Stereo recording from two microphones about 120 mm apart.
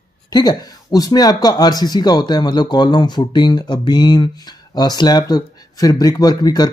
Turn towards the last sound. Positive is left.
turn(degrees=35)  # may be behind; listen again after turning